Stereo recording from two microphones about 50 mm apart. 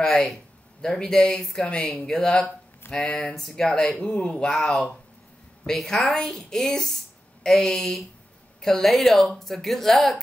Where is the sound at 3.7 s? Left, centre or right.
Centre.